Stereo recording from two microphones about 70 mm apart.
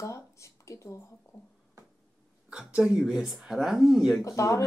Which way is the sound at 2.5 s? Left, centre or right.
Centre.